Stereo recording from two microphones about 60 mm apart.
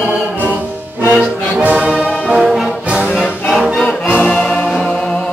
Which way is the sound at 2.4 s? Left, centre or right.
Centre.